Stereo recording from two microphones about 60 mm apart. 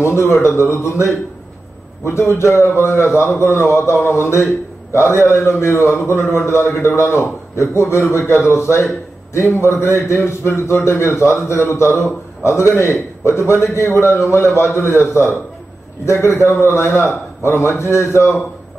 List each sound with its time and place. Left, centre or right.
0.0 s a man's voice: left
2.0 s a man's voice: left